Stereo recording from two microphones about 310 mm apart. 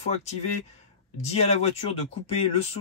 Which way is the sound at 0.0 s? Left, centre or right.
Left.